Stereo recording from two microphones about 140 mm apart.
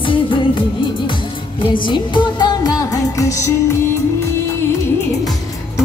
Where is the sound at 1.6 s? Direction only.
35° left (ahead or behind).